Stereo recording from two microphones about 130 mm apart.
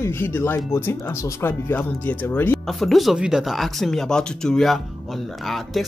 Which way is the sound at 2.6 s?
Centre (ahead or behind).